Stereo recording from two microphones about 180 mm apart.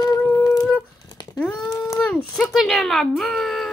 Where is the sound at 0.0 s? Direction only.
15° left (ahead or behind).